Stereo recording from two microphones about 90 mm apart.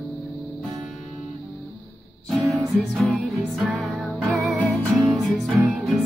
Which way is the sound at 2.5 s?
Centre (ahead or behind).